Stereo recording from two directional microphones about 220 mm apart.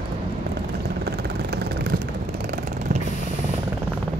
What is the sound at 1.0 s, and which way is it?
Vehicle, 45° right (ahead or behind).